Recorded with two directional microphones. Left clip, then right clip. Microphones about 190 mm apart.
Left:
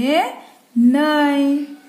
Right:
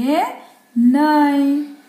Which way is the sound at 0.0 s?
30° left (ahead or behind).